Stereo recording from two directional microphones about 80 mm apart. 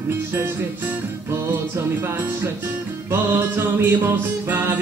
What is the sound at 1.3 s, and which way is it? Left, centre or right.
Music, right.